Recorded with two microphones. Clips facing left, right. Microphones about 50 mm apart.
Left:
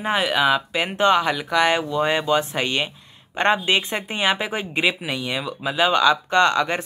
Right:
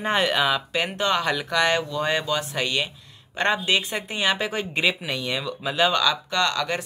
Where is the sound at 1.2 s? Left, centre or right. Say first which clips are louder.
Left 3 dB; centre.